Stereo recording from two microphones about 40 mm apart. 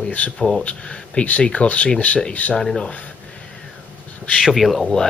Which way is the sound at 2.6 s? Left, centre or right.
Centre.